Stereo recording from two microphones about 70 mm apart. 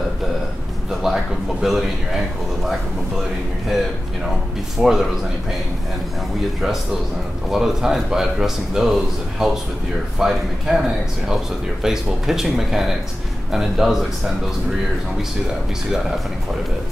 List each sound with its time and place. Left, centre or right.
1.0 s a man's voice: centre
4.8 s speech: centre
7.5 s a man's voice: centre